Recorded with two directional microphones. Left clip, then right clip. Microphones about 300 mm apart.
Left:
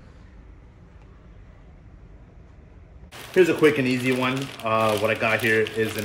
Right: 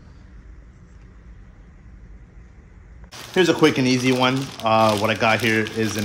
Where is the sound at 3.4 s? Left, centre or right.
Right.